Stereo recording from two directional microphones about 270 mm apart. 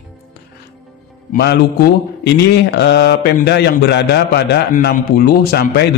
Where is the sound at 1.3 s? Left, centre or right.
Left.